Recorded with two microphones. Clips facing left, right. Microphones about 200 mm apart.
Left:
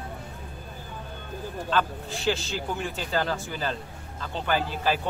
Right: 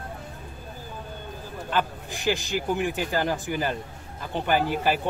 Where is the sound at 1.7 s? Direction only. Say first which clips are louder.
Even; 15° right (ahead or behind).